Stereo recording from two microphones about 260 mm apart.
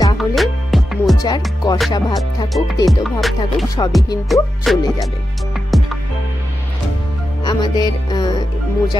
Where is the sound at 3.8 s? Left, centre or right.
Centre.